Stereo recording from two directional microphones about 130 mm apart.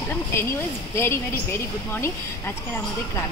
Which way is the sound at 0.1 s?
20° left (ahead or behind).